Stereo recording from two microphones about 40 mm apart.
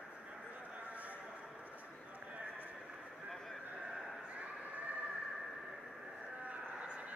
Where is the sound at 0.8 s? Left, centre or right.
Right.